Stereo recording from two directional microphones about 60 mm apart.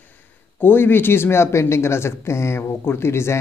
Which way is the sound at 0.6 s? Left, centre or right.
Left.